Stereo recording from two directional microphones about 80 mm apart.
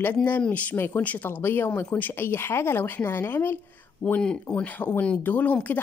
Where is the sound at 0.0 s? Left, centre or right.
Left.